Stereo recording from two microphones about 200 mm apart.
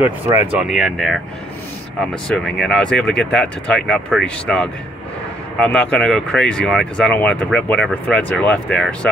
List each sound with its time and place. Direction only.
0.0 s speech: 15° right (ahead or behind)
0.6 s speech: 5° right (ahead or behind)